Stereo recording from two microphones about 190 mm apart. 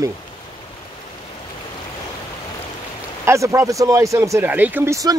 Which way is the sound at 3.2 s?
15° right (ahead or behind).